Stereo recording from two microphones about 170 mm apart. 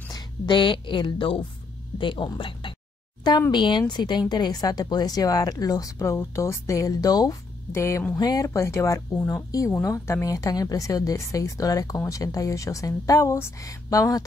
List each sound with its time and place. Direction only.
0.1 s a woman's voice: 30° left (ahead or behind)